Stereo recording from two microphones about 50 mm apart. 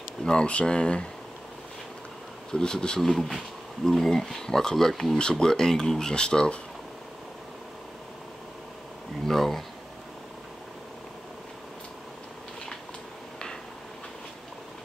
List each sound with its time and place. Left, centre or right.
0.2 s speech: centre
2.5 s speech: centre
3.0 s speech: centre
9.2 s speech: centre